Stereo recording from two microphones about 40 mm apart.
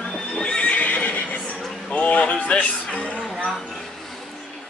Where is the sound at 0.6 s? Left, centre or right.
Left.